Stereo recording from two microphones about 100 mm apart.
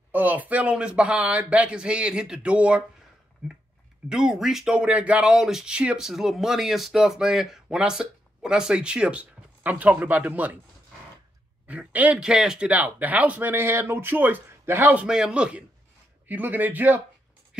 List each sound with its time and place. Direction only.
0.1 s speech: 15° right (ahead or behind)
4.1 s speech: 5° right (ahead or behind)
11.6 s speech: 15° right (ahead or behind)
15.0 s speech: 10° right (ahead or behind)